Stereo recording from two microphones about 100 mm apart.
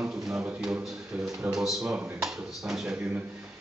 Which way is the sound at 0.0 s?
5° right (ahead or behind).